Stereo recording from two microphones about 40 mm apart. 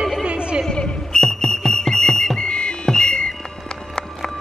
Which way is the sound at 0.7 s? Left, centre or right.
Centre.